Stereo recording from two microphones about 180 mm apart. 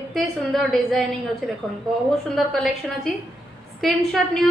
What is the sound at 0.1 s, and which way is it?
Speech, centre (ahead or behind).